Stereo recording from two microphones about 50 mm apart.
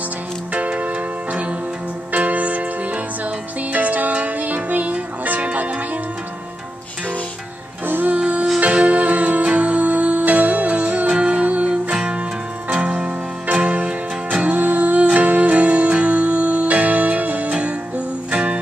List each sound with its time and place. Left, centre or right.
0.5 s music: right
7.8 s music: right
8.2 s music: right